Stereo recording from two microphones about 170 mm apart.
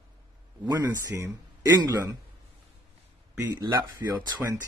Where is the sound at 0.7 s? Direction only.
15° right (ahead or behind).